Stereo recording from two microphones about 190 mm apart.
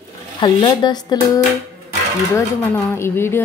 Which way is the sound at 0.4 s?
25° left (ahead or behind).